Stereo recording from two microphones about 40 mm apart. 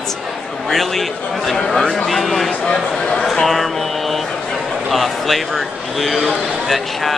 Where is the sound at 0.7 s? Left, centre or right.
Centre.